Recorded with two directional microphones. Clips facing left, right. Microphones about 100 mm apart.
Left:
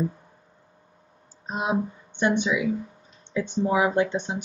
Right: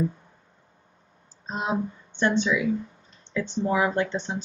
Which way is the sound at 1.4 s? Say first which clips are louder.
Left 2 dB; 15° left (ahead or behind).